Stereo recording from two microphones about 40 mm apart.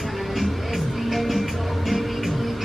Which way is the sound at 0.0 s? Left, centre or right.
Centre.